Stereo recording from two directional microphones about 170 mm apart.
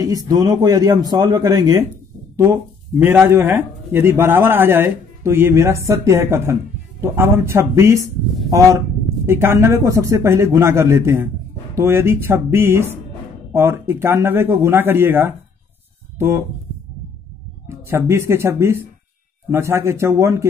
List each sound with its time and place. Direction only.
0.0 s speech: 20° right (ahead or behind)
17.6 s speech: 15° right (ahead or behind)